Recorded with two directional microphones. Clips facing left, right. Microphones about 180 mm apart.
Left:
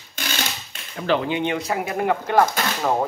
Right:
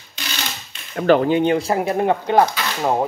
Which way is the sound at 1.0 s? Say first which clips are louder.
Right 7 dB; 50° right (ahead or behind).